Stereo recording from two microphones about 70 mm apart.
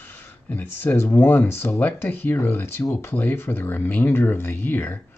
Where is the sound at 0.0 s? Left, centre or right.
Left.